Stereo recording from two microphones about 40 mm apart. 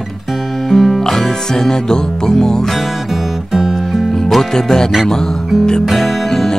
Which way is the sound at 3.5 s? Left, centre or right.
Centre.